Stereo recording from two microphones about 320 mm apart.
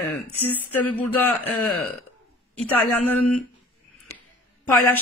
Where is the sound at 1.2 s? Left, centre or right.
Left.